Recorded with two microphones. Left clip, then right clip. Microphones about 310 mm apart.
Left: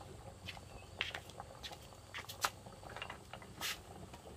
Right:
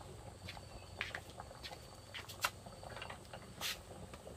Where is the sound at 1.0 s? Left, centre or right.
Left.